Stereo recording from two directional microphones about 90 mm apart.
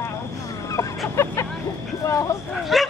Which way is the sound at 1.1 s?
30° left (ahead or behind).